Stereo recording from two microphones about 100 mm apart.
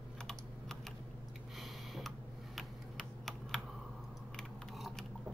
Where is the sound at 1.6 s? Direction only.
Centre (ahead or behind).